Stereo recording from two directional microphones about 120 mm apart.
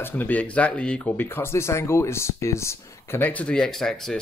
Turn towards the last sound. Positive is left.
turn(degrees=5)  # may be behind; listen again after turning